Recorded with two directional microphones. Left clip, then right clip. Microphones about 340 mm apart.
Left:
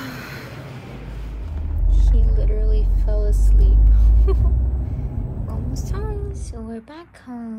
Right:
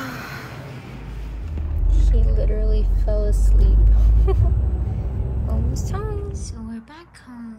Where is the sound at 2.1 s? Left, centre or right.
Left.